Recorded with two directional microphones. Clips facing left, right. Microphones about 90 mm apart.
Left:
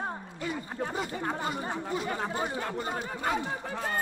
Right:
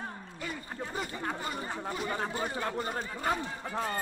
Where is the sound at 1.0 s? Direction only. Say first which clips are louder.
Left 1 dB; 20° left (ahead or behind).